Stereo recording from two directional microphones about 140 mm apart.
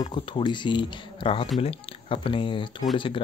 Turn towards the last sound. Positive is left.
turn(degrees=35)  # may be behind; listen again after turning